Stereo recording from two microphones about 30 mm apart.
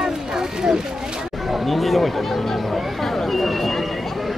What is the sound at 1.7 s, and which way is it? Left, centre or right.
Speech, centre.